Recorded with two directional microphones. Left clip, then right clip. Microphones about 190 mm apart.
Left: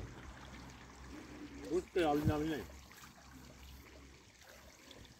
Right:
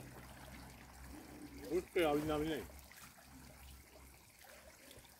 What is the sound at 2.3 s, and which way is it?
Speech, 50° left (ahead or behind).